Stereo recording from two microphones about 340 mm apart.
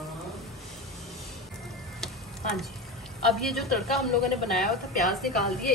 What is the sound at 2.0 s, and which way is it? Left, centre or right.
Tick-tock, centre.